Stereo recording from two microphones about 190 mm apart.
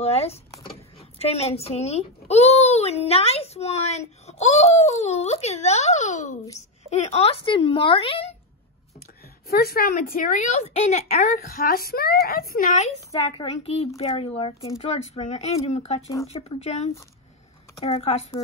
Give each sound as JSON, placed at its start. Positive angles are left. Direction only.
{"t": 0.0, "sound": "a child's voice", "side_deg": 35}
{"t": 9.5, "sound": "a child's voice", "side_deg": 55}
{"t": 11.4, "sound": "speech", "side_deg": 50}
{"t": 13.1, "sound": "a child's voice", "side_deg": 30}